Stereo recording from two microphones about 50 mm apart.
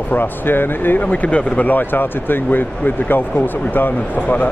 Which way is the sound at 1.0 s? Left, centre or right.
Left.